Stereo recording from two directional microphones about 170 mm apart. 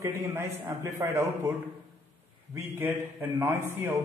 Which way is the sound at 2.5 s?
10° right (ahead or behind).